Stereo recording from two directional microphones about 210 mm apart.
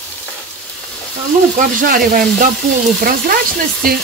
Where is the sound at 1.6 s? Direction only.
40° right (ahead or behind).